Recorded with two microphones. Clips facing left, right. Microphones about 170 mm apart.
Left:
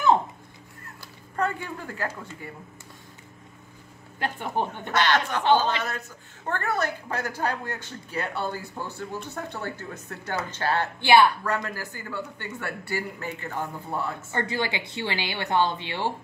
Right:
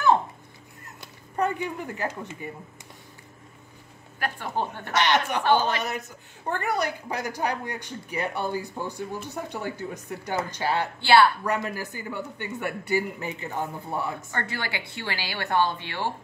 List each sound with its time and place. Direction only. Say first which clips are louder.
1.0 s speech: right 1 dB; 15° right (ahead or behind)
4.2 s a woman's voice: left 1 dB; 20° left (ahead or behind)
4.9 s speech: even; 15° right (ahead or behind)
11.0 s speech: even; 15° left (ahead or behind)
11.4 s speech: right 1 dB; 20° right (ahead or behind)
14.3 s a woman's voice: left 4 dB; 20° left (ahead or behind)